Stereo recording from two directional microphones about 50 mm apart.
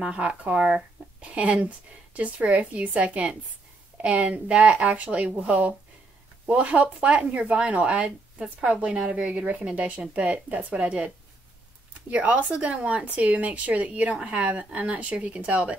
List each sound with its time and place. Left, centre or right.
0.0 s speech: right
12.1 s speech: right